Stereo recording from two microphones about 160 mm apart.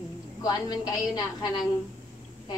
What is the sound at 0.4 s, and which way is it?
A woman's voice, 25° left (ahead or behind).